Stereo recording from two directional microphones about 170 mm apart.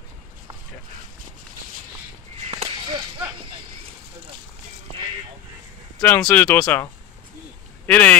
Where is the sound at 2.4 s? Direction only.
35° right (ahead or behind).